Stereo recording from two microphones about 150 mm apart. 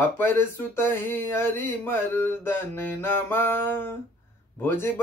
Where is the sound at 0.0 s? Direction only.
15° left (ahead or behind).